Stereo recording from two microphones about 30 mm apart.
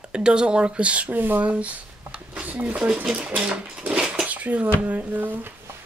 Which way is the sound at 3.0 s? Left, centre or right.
Right.